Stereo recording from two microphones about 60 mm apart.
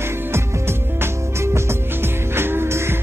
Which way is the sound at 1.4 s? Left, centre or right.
Right.